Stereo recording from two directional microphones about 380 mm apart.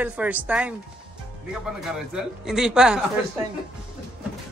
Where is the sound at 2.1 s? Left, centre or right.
Centre.